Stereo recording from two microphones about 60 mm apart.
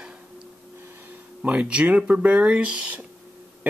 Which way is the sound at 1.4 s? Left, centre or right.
Centre.